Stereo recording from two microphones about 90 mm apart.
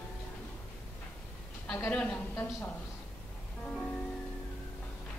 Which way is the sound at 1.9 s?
10° left (ahead or behind).